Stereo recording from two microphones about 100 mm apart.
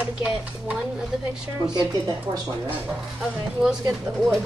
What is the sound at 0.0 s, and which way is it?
Speech, 10° right (ahead or behind).